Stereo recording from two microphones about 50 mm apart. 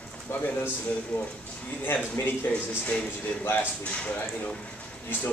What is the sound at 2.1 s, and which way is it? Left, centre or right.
Speech, left.